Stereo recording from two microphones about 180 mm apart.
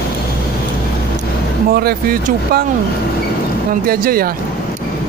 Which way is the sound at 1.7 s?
60° right (ahead or behind).